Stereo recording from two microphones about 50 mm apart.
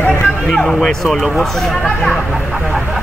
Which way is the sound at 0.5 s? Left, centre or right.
Centre.